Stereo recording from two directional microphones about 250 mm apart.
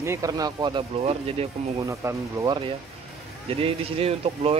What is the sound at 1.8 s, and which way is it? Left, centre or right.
Speech, centre.